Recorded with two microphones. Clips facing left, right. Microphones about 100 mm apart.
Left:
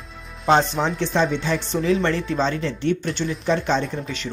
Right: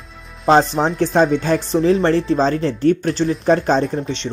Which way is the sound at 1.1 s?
45° right (ahead or behind).